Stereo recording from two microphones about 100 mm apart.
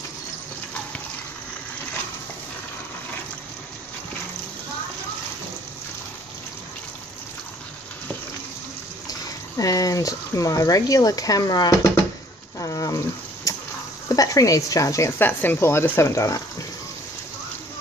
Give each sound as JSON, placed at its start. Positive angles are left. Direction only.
{"t": 9.6, "sound": "speech", "side_deg": 35}
{"t": 12.5, "sound": "a sound", "side_deg": 35}
{"t": 14.0, "sound": "speech", "side_deg": 35}